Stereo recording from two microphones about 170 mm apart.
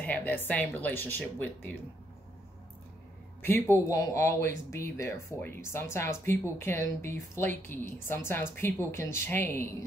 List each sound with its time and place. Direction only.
0.0 s speech: 10° left (ahead or behind)
3.4 s speech: 10° left (ahead or behind)